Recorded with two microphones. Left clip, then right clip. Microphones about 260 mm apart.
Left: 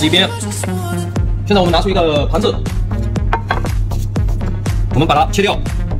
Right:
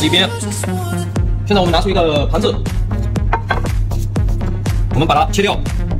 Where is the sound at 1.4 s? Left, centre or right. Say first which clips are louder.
Left 1 dB; left.